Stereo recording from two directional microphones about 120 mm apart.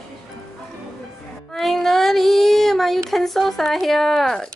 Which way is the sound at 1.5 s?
Centre (ahead or behind).